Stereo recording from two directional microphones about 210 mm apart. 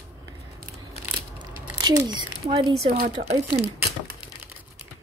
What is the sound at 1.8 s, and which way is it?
Speech, 20° right (ahead or behind).